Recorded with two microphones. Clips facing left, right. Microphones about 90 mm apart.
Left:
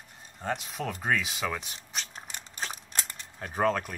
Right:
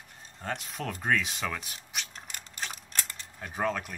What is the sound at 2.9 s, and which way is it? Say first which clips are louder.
Mechanisms: left 1 dB; 10° left (ahead or behind).